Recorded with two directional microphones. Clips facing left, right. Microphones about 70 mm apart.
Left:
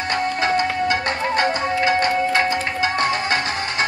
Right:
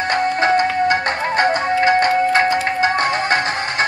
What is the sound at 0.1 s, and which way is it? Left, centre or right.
Music, right.